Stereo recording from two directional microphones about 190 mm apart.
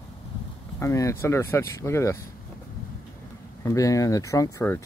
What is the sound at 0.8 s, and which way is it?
Speech, 15° left (ahead or behind).